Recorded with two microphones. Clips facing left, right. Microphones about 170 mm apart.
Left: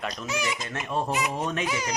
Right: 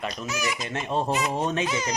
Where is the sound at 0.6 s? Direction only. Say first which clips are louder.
Right 2 dB; 25° right (ahead or behind).